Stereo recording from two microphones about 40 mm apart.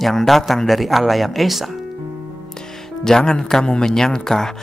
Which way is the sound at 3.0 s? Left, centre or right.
Centre.